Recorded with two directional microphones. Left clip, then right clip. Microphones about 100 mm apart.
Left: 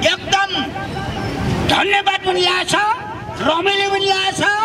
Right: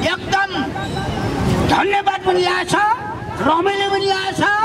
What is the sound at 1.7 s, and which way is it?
A man's voice, 25° left (ahead or behind).